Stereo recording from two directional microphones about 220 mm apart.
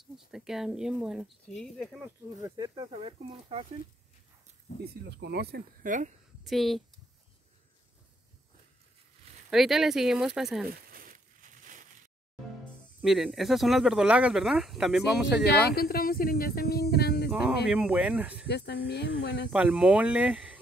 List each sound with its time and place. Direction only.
0.0 s speech: centre (ahead or behind)
2.4 s speech: 20° right (ahead or behind)
5.0 s speech: 50° right (ahead or behind)
5.8 s speech: 35° right (ahead or behind)
6.4 s speech: centre (ahead or behind)
9.5 s speech: centre (ahead or behind)
10.9 s a sound: 40° right (ahead or behind)
13.0 s speech: centre (ahead or behind)
15.4 s speech: 45° left (ahead or behind)
17.6 s speech: 5° right (ahead or behind)
18.5 s speech: 50° left (ahead or behind)
19.5 s speech: 5° right (ahead or behind)